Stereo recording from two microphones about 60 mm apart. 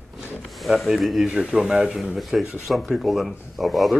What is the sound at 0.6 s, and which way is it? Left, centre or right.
Speech, centre.